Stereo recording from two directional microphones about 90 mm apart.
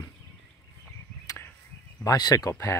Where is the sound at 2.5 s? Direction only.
30° left (ahead or behind).